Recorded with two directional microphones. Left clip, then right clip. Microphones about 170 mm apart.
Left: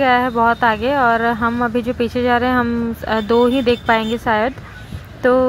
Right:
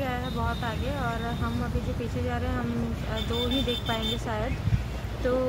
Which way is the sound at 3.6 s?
50° left (ahead or behind).